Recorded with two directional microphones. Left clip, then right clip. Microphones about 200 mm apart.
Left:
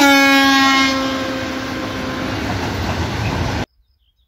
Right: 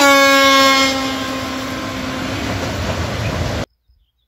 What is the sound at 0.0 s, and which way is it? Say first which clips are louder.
Train: right 1 dB; 30° right (ahead or behind).